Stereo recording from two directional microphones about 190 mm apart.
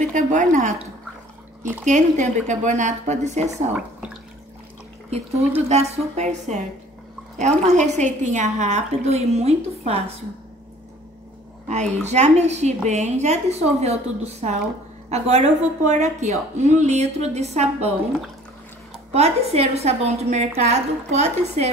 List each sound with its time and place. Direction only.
0.1 s a woman's voice: 40° right (ahead or behind)
1.9 s a woman's voice: 40° right (ahead or behind)
5.7 s a woman's voice: 35° right (ahead or behind)
11.6 s a woman's voice: 35° right (ahead or behind)
19.1 s a woman's voice: 35° right (ahead or behind)